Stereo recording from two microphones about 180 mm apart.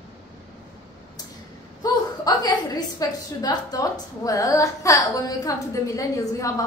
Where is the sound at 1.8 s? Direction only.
20° left (ahead or behind).